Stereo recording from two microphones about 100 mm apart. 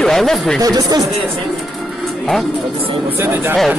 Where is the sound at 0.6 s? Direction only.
40° right (ahead or behind).